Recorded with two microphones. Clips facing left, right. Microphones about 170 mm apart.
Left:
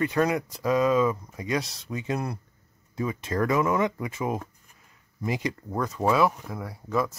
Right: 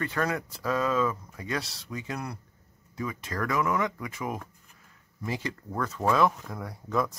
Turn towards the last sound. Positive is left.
turn(degrees=5)  # may be behind; listen again after turning